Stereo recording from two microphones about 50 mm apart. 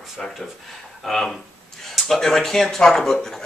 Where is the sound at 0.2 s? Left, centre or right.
Centre.